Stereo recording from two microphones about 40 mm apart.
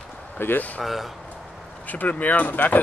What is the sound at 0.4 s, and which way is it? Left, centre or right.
Speech, left.